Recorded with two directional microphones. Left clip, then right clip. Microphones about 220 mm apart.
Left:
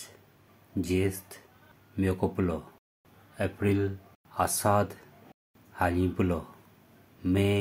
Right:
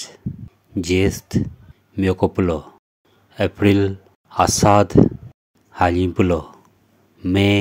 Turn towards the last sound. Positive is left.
turn(degrees=-40)  # may be behind; listen again after turning